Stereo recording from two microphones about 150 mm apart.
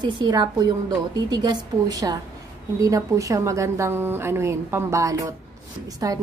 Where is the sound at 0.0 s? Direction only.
30° right (ahead or behind).